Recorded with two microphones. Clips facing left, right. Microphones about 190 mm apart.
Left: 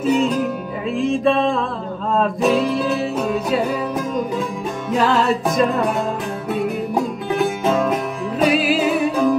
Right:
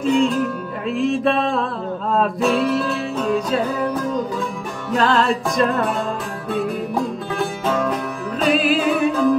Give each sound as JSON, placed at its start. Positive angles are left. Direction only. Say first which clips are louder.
{"t": 0.0, "sound": "music", "louder": "even", "side_deg": 5}
{"t": 4.9, "sound": "music", "louder": "even", "side_deg": 5}
{"t": 6.5, "sound": "music", "louder": "left 1 dB", "side_deg": 15}
{"t": 8.5, "sound": "music", "louder": "right 1 dB", "side_deg": 5}
{"t": 9.1, "sound": "music", "louder": "even", "side_deg": 20}